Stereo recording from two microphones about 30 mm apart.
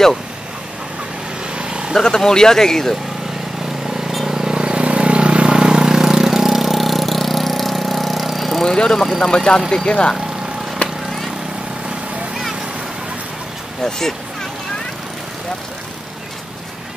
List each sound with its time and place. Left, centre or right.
1.5 s vehicle: right
2.0 s speech: centre
4.3 s vehicle: centre
4.6 s vehicle: right
5.6 s vehicle: right; by 8.6 s centre
8.6 s speech: left
10.8 s vehicle: left
13.8 s speech: centre